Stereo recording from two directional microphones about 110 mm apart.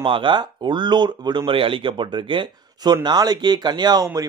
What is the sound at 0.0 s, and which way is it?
Speech, 50° right (ahead or behind).